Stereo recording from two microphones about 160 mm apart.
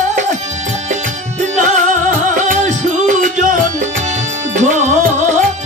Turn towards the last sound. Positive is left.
turn(degrees=-50)  # may be behind; listen again after turning